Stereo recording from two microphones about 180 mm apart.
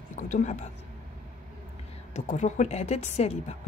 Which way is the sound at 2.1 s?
40° left (ahead or behind).